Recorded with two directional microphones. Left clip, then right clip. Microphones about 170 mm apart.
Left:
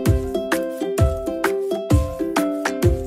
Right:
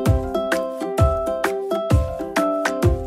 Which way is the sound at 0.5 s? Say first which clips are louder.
Even; centre (ahead or behind).